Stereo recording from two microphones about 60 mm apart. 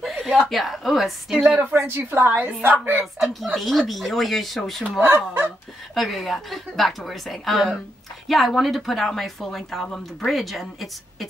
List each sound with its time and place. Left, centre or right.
0.0 s speech: centre
1.9 s a woman's voice: right
3.2 s speech: centre
5.0 s a woman's voice: right
5.9 s speech: centre